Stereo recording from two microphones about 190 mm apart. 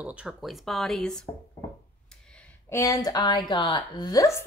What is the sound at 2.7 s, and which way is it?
A woman's voice, 15° left (ahead or behind).